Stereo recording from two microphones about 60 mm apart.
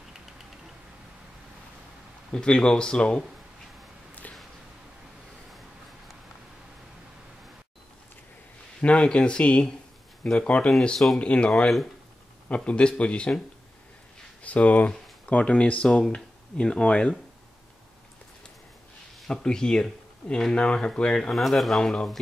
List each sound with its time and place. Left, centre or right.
2.3 s speech: centre
4.2 s a sound: left
8.8 s speech: centre
14.4 s speech: left
19.2 s speech: centre
21.4 s speech: centre